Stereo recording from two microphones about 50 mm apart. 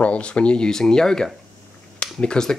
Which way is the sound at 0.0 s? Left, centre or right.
Left.